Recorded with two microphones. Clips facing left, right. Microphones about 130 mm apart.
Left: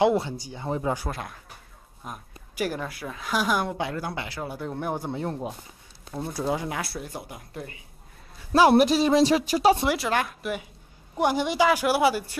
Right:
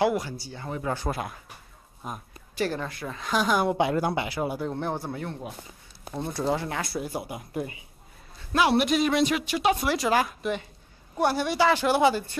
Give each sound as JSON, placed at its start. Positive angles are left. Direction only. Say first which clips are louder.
{"t": 0.0, "sound": "speech", "louder": "left 3 dB", "side_deg": 25}
{"t": 1.1, "sound": "speech", "louder": "right 3 dB", "side_deg": -5}
{"t": 2.5, "sound": "speech", "louder": "even", "side_deg": 10}
{"t": 3.7, "sound": "speech", "louder": "right 6 dB", "side_deg": -20}
{"t": 4.6, "sound": "speech", "louder": "even", "side_deg": 5}
{"t": 5.2, "sound": "speech", "louder": "left 5 dB", "side_deg": 35}
{"t": 6.1, "sound": "speech", "louder": "right 1 dB", "side_deg": 5}
{"t": 8.5, "sound": "speech", "louder": "left 4 dB", "side_deg": 35}
{"t": 9.9, "sound": "speech", "louder": "right 2 dB", "side_deg": 0}
{"t": 11.1, "sound": "speech", "louder": "left 1 dB", "side_deg": 15}